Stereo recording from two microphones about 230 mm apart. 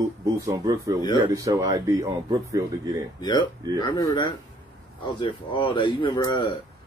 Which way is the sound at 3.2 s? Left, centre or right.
Centre.